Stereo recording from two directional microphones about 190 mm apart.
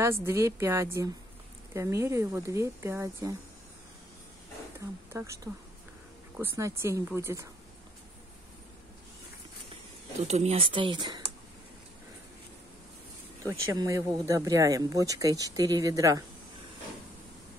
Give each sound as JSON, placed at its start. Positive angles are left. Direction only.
{"t": 0.0, "sound": "speech", "side_deg": -15}
{"t": 4.7, "sound": "speech", "side_deg": -15}
{"t": 10.2, "sound": "speech", "side_deg": -35}
{"t": 13.4, "sound": "speech", "side_deg": -15}